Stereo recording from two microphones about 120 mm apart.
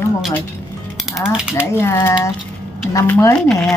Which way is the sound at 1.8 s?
20° left (ahead or behind).